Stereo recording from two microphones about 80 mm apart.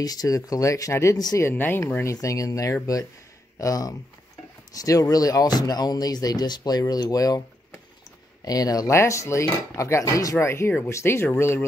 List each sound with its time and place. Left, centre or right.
0.0 s speech: left
1.4 s speech: left
2.1 s speech: left
8.5 s speech: left
8.9 s cutlery: left